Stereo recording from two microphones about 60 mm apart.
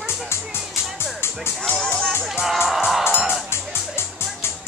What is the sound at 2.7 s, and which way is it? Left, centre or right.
Music, centre.